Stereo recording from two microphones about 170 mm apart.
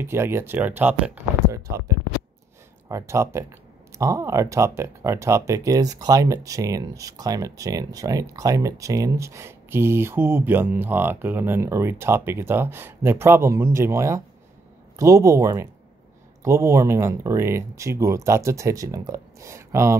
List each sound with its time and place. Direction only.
0.0 s speech: 15° right (ahead or behind)